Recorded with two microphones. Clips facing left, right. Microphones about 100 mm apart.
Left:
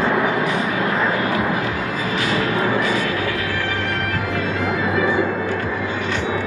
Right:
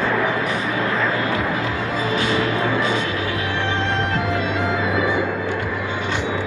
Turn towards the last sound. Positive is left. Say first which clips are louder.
# left 2 dB
turn(degrees=-20)  # may be behind; listen again after turning